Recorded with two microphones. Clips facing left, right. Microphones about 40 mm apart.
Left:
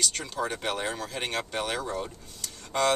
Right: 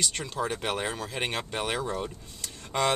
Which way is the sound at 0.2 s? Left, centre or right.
Centre.